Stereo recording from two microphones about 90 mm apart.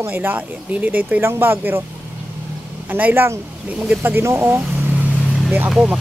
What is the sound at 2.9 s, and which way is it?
Speech, 20° right (ahead or behind).